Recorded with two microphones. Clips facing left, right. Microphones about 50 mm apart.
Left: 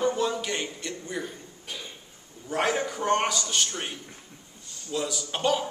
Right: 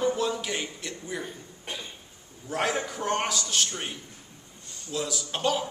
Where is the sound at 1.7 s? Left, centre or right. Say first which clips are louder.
Right 2 dB; right.